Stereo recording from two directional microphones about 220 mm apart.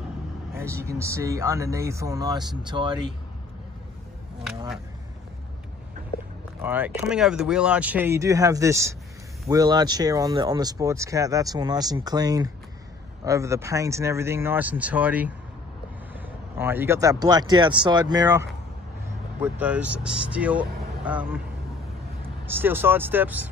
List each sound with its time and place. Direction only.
0.6 s speech: 10° right (ahead or behind)
6.6 s speech: 10° right (ahead or behind)
16.5 s speech: 10° right (ahead or behind)
22.6 s speech: 10° right (ahead or behind)